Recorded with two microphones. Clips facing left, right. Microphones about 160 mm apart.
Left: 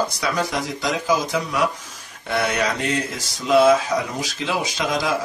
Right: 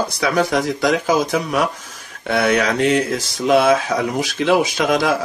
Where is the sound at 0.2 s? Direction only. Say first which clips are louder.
Right 6 dB; 60° right (ahead or behind).